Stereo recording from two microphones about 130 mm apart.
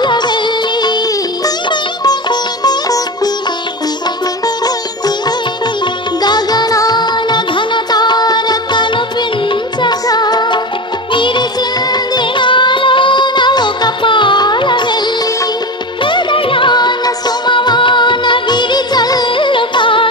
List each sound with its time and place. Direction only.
0.0 s music: 35° left (ahead or behind)
1.4 s music: 30° left (ahead or behind)
2.6 s sitar: 30° left (ahead or behind)
6.2 s music: 30° left (ahead or behind)
16.0 s music: 40° left (ahead or behind)